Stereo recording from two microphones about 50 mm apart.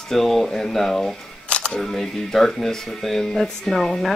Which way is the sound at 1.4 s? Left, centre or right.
Left.